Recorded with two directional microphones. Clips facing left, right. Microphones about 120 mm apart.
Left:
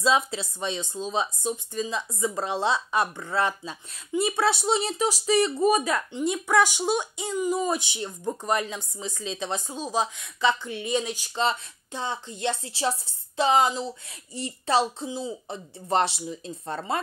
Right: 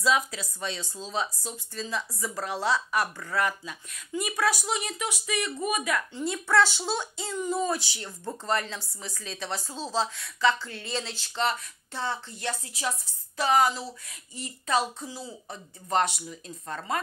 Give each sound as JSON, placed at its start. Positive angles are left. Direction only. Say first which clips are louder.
{"t": 0.0, "sound": "speech", "louder": "left 3 dB", "side_deg": 25}
{"t": 6.1, "sound": "speech", "louder": "left 2 dB", "side_deg": 15}
{"t": 14.3, "sound": "speech", "louder": "left 3 dB", "side_deg": 30}